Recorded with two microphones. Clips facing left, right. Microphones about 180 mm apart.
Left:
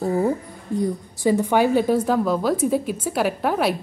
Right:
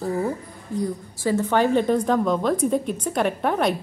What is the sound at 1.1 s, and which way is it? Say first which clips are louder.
Speech: left 2 dB; 15° left (ahead or behind).